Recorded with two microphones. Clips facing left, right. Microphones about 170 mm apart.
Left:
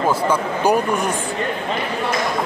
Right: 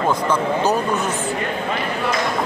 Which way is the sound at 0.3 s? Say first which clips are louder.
Left 1 dB; 15° left (ahead or behind).